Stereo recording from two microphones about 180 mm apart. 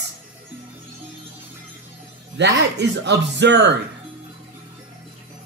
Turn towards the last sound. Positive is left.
turn(degrees=-75)  # may be behind; listen again after turning